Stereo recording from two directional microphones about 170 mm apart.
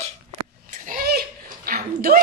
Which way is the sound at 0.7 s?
55° right (ahead or behind).